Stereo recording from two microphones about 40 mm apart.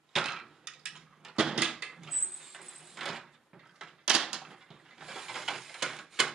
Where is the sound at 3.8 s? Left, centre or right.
Centre.